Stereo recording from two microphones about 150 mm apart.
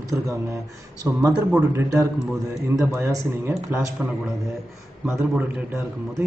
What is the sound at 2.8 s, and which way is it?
A man's voice, 15° right (ahead or behind).